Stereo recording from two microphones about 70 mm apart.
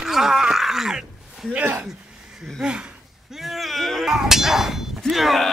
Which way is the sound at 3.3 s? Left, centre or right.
Centre.